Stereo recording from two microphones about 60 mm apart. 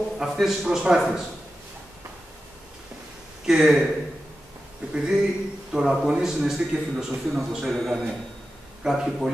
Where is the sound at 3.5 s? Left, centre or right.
Centre.